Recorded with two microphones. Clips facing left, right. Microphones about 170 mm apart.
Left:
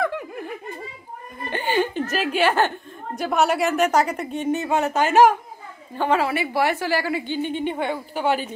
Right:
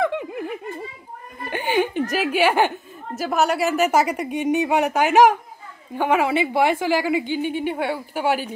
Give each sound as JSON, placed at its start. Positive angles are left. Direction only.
{"t": 0.0, "sound": "giggle", "side_deg": -20}
{"t": 1.5, "sound": "a woman's voice", "side_deg": -15}